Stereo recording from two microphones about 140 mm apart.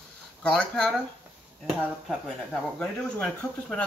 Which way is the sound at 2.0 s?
Centre (ahead or behind).